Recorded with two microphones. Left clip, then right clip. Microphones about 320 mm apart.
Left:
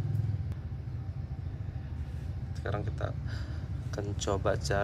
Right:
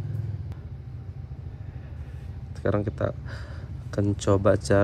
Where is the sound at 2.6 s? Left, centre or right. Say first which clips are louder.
Right 11 dB; centre.